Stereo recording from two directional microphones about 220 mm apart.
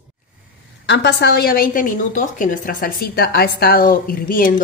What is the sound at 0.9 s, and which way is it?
A woman's voice, 50° left (ahead or behind).